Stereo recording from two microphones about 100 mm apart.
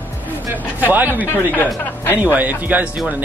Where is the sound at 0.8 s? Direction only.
20° right (ahead or behind).